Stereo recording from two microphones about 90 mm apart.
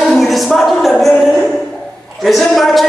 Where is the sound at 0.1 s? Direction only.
Centre (ahead or behind).